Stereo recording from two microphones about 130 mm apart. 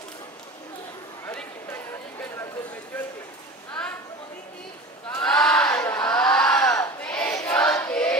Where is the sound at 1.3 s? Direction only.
15° left (ahead or behind).